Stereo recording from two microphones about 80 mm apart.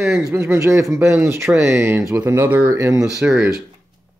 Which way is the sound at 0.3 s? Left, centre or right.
Right.